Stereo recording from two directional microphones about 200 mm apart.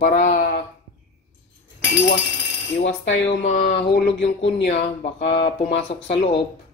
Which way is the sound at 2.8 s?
35° left (ahead or behind).